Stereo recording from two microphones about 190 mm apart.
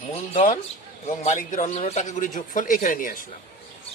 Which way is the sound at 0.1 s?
30° left (ahead or behind).